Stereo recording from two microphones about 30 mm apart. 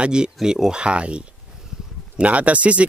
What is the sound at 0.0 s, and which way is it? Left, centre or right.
Speech, right.